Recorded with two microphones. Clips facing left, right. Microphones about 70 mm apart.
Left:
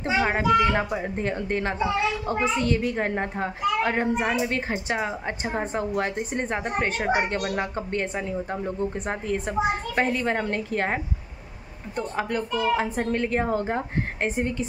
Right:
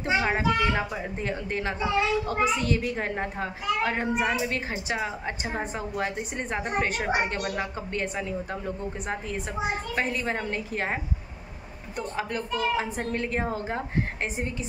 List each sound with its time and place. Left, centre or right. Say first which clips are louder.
0.0 s speech: left 2 dB; left
7.2 s a woman's voice: left 2 dB; left
10.4 s a woman's voice: left 4 dB; left
12.2 s a woman's voice: left 3 dB; left